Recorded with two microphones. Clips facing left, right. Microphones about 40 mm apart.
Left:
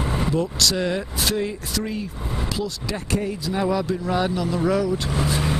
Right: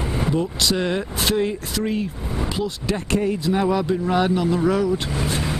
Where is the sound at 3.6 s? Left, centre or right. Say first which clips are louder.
Right 2 dB; centre.